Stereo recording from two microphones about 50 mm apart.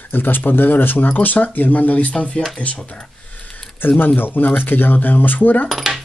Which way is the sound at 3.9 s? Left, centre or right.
Left.